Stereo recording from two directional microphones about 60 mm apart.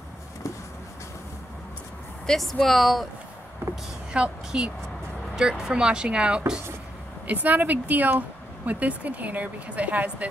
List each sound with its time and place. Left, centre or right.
2.2 s speech: centre
3.6 s a sound: right
4.1 s speech: centre
7.2 s a woman's voice: right